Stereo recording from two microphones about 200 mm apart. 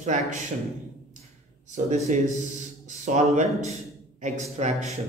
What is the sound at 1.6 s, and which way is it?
Speech, 35° right (ahead or behind).